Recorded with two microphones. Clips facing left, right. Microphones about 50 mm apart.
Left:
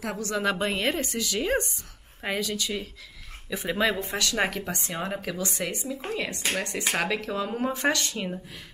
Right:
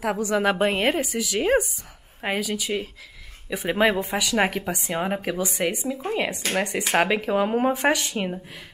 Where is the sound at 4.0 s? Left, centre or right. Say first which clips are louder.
Right 4 dB; centre.